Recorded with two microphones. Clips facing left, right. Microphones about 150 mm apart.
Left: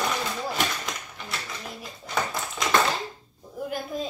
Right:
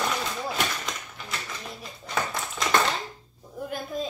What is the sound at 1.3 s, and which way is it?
A woman's voice, centre (ahead or behind).